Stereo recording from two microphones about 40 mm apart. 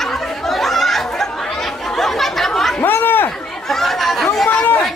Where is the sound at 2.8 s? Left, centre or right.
Left.